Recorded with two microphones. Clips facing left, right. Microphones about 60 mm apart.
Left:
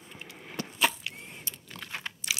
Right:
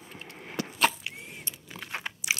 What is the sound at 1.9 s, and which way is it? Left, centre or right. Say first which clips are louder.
Crumpling: right 4 dB; centre.